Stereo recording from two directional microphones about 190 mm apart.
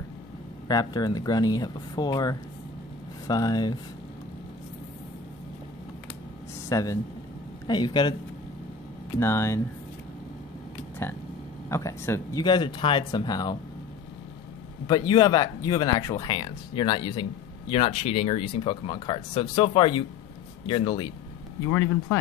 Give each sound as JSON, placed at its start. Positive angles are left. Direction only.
{"t": 0.7, "sound": "speech", "side_deg": 20}
{"t": 6.7, "sound": "speech", "side_deg": 15}
{"t": 9.2, "sound": "speech", "side_deg": 15}
{"t": 11.7, "sound": "speech", "side_deg": 15}
{"t": 14.9, "sound": "speech", "side_deg": 20}
{"t": 21.6, "sound": "speech", "side_deg": 15}